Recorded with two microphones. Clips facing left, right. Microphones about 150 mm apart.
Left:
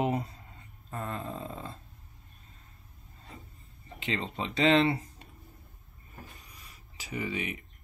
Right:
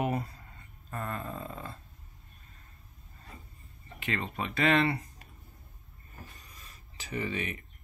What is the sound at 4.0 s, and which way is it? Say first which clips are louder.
Speech: left 1 dB; 20° left (ahead or behind).